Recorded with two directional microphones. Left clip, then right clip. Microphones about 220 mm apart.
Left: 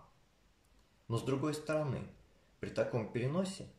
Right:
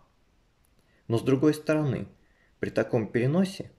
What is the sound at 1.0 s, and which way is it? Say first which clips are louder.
Speech: right 13 dB; 40° right (ahead or behind).